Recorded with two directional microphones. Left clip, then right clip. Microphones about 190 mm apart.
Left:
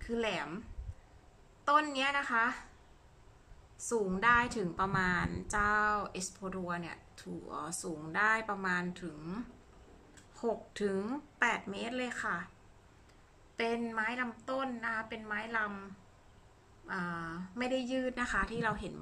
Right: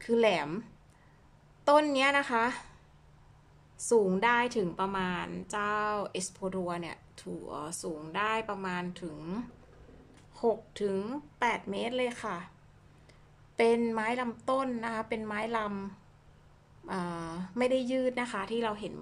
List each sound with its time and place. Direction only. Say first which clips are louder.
0.0 s a woman's voice: right 9 dB; 20° right (ahead or behind)
3.7 s a woman's voice: right 8 dB; 15° right (ahead or behind)
13.6 s a woman's voice: right 7 dB; 20° right (ahead or behind)